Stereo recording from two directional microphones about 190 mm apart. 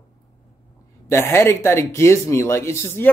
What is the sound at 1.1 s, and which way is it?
Speech, 15° left (ahead or behind).